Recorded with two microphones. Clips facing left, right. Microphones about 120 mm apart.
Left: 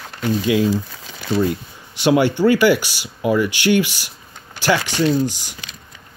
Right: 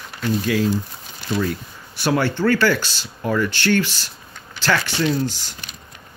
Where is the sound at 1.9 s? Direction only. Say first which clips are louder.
Left 5 dB; 15° left (ahead or behind).